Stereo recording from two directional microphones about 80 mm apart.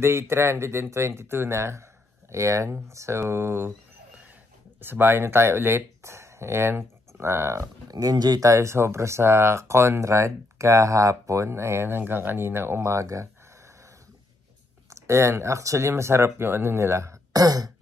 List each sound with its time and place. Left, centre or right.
0.0 s speech: right
4.7 s speech: right
7.9 s speech: right
8.5 s speech: right
14.9 s speech: right
17.3 s throat clearing: right